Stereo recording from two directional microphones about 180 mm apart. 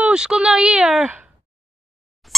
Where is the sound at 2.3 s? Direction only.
Centre (ahead or behind).